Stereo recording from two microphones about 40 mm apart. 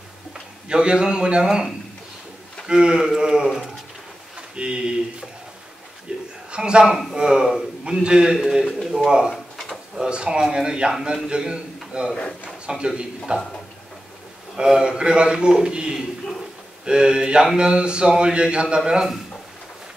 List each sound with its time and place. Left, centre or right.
0.7 s a man's voice: right
6.1 s a sound: right
6.5 s a man's voice: right
8.6 s speech: centre
8.9 s speech: centre
9.3 s drawer open or close: centre
9.9 s a man's voice: right
14.6 s a man's voice: centre